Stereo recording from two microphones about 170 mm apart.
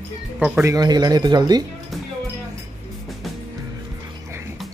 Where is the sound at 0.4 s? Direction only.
10° right (ahead or behind).